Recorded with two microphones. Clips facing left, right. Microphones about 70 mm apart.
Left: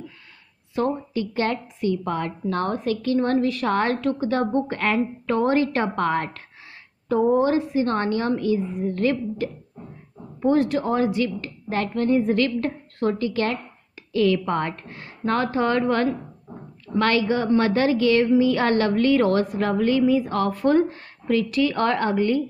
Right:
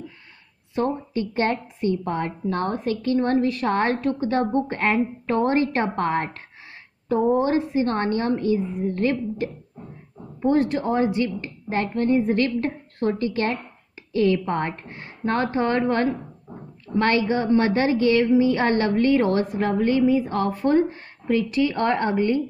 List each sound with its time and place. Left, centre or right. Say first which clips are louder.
0.7 s a woman's voice: even; right
7.4 s a woman's voice: even; right